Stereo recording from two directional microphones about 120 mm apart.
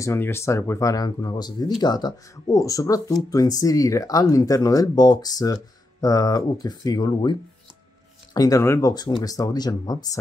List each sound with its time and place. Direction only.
0.0 s speech: 20° left (ahead or behind)